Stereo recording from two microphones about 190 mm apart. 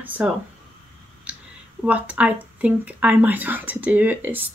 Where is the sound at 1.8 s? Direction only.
5° right (ahead or behind).